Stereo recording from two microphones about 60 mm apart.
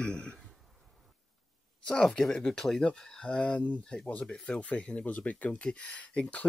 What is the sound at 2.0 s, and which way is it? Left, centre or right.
Speech, centre.